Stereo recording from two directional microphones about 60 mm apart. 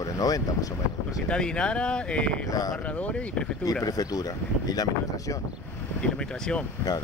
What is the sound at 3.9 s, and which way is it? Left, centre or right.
Speech, left.